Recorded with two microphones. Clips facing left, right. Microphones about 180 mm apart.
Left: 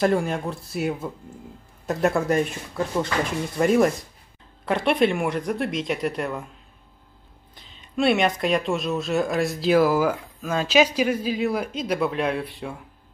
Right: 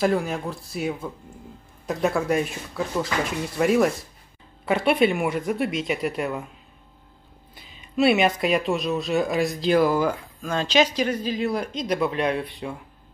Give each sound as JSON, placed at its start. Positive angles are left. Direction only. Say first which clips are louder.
{"t": 0.0, "sound": "speech", "louder": "left 1 dB", "side_deg": 0}
{"t": 7.5, "sound": "speech", "louder": "right 2 dB", "side_deg": -5}